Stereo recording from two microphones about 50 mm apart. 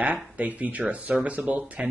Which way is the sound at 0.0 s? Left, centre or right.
Right.